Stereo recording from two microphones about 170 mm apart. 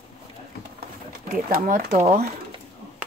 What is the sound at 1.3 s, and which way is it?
Speech, 50° right (ahead or behind).